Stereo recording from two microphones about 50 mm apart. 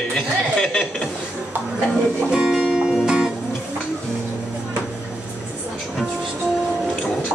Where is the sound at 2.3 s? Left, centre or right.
Centre.